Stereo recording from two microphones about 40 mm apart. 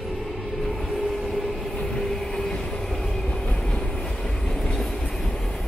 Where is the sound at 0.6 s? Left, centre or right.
Centre.